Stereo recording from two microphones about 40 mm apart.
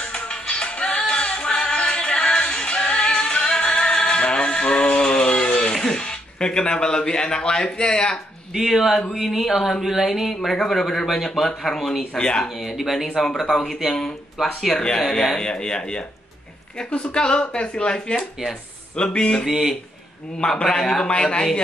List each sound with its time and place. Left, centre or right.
0.0 s music: left
4.9 s a sound: centre
8.5 s speech: centre
10.3 s speech: centre
12.2 s speech: left
12.6 s speech: centre
13.4 s speech: centre
14.7 s speech: left
15.0 s speech: centre